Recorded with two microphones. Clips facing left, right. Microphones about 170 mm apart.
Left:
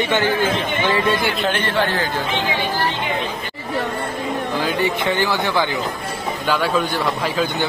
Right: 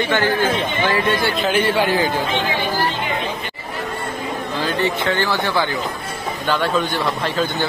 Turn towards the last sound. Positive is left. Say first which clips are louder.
# even
turn(degrees=5)  # may be behind; listen again after turning